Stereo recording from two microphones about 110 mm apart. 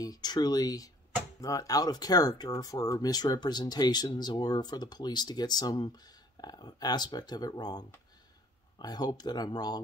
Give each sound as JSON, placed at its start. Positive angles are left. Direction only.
{"t": 0.0, "sound": "speech", "side_deg": 35}